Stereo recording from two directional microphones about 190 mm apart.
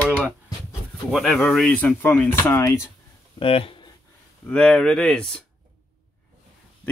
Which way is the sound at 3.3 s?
30° left (ahead or behind).